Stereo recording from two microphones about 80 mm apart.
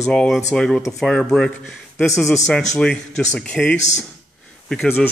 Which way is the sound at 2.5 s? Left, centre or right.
Centre.